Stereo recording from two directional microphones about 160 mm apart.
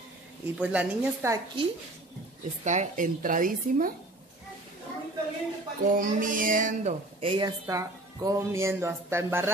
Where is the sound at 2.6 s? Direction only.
50° right (ahead or behind).